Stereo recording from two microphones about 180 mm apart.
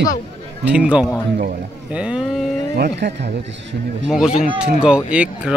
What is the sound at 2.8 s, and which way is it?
Speech, 70° right (ahead or behind).